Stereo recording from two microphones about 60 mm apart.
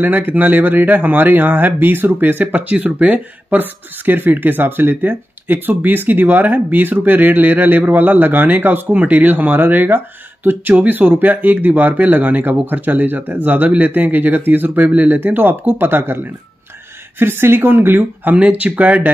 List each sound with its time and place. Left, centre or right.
0.0 s speech: right
17.2 s speech: right